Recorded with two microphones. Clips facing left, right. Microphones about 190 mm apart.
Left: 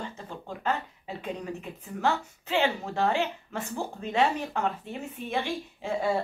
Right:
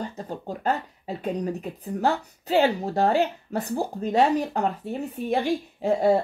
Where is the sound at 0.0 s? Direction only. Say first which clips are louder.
Right 6 dB; 40° right (ahead or behind).